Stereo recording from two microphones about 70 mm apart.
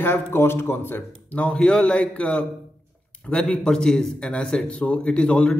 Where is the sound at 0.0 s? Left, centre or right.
Left.